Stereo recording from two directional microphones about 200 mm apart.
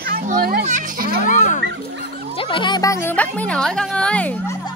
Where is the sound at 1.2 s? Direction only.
40° left (ahead or behind).